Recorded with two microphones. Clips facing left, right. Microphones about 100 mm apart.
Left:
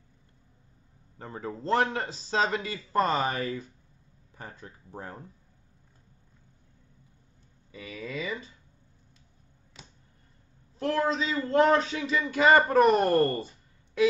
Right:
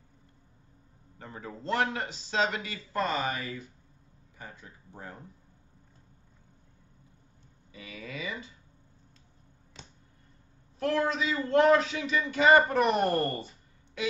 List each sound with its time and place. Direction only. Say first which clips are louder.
1.1 s a man's voice: left 5 dB; 35° left (ahead or behind)
7.8 s a man's voice: left 4 dB; 35° left (ahead or behind)
10.8 s a man's voice: left 1 dB; 30° left (ahead or behind)